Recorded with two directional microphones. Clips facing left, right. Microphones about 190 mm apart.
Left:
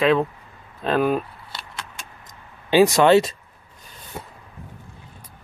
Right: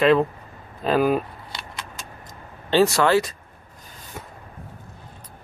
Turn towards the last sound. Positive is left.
turn(degrees=35)  # may be behind; listen again after turning